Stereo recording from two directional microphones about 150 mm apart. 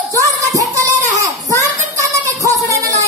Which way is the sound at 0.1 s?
20° right (ahead or behind).